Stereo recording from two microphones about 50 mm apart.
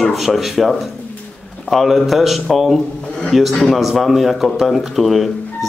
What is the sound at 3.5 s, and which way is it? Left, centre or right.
Speech, centre.